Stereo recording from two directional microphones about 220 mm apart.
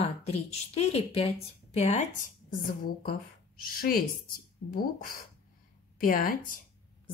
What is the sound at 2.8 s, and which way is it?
Speech, 40° left (ahead or behind).